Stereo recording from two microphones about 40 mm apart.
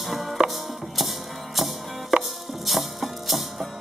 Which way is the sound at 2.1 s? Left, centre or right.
Right.